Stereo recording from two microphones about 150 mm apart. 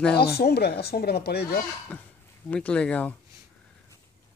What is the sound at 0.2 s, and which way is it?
Speech, 90° left.